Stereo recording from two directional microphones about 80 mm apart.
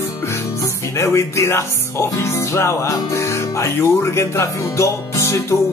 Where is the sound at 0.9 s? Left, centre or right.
Left.